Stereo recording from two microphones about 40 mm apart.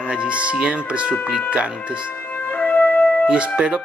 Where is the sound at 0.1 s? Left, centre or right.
Right.